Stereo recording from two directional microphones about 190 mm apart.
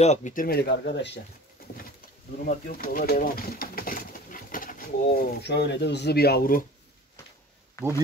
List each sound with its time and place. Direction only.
0.0 s speech: 40° left (ahead or behind); by 1.2 s 65° left (ahead or behind)
2.3 s speech: 50° left (ahead or behind)